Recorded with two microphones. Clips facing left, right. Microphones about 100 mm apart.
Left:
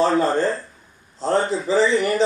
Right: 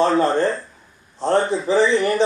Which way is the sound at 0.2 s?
25° right (ahead or behind).